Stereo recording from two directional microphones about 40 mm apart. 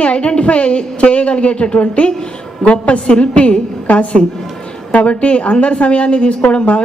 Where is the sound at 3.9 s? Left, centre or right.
Left.